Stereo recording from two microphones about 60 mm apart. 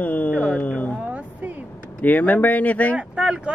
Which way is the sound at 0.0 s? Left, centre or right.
Left.